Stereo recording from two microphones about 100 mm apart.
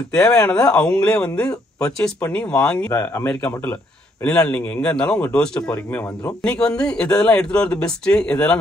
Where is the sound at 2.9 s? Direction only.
20° left (ahead or behind).